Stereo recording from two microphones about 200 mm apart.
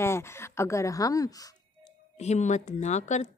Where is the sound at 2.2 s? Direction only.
35° left (ahead or behind).